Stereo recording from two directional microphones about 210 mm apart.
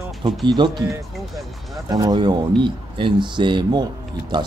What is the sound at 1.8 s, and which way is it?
Speech, 20° right (ahead or behind).